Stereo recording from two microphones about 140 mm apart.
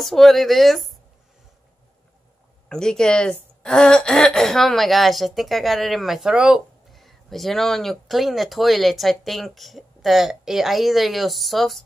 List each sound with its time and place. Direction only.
0.0 s speech: centre (ahead or behind)
2.7 s speech: 5° left (ahead or behind)